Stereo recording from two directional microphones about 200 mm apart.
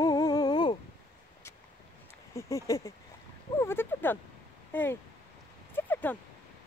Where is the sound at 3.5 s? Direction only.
10° left (ahead or behind).